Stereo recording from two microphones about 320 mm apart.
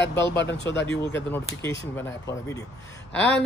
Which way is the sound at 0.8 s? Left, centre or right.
Centre.